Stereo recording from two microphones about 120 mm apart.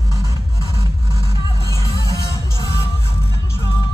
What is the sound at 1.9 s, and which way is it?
Music, 25° left (ahead or behind).